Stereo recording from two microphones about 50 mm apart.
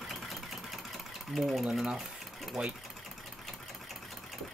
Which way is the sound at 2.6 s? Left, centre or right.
Right.